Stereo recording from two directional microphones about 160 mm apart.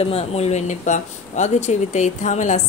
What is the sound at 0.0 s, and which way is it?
Speech, 40° left (ahead or behind).